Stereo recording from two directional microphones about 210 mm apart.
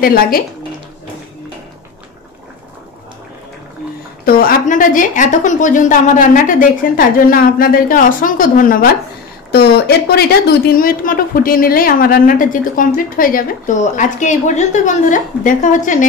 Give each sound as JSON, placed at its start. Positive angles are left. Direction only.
{"t": 0.0, "sound": "speech", "side_deg": 45}
{"t": 4.3, "sound": "a woman's voice", "side_deg": 45}